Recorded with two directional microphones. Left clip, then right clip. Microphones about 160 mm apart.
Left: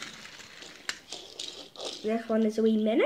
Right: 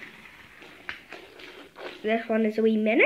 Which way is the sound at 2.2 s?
15° right (ahead or behind).